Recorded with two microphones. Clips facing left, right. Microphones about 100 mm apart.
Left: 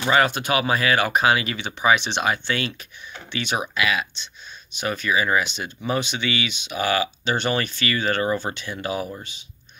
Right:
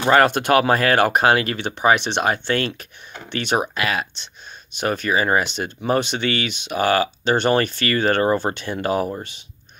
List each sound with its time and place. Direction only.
0.0 s speech: 50° right (ahead or behind)